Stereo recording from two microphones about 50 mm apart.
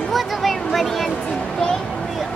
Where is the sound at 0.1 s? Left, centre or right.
Centre.